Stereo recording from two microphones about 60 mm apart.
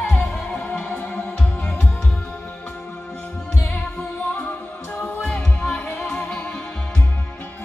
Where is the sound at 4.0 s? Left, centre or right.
Left.